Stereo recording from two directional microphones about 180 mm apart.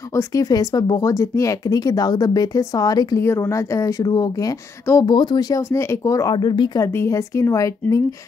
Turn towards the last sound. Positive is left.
turn(degrees=15)  # may be behind; listen again after turning